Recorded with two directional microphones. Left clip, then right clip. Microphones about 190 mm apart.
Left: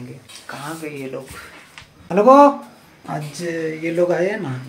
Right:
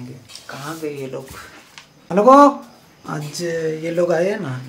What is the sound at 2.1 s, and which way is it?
Speech, 5° right (ahead or behind).